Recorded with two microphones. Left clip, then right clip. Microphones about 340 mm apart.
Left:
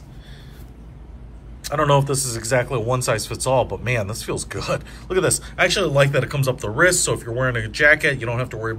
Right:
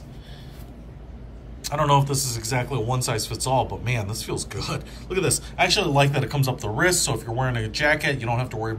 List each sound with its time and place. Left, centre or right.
1.6 s a man's voice: centre